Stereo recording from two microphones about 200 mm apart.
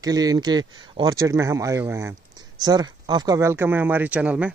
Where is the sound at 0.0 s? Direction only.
20° right (ahead or behind).